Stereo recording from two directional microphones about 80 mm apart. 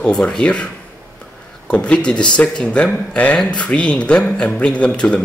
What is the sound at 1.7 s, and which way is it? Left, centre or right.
Speech, centre.